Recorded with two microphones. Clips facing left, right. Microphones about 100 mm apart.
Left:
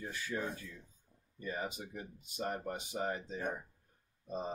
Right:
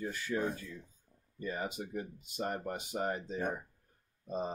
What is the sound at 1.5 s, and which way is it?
Speech, centre (ahead or behind).